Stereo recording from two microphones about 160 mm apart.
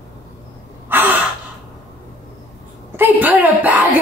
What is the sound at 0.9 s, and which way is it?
Gasp, 10° right (ahead or behind).